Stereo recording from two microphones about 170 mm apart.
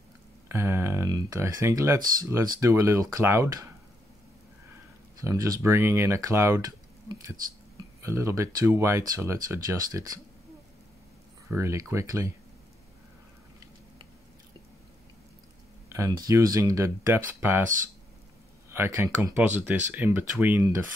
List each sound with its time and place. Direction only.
0.5 s a sound: 15° right (ahead or behind)
2.2 s speech: 15° right (ahead or behind)
5.1 s speech: 20° right (ahead or behind)
11.5 s speech: 15° right (ahead or behind)
15.9 s speech: 20° right (ahead or behind)
18.7 s speech: 15° right (ahead or behind)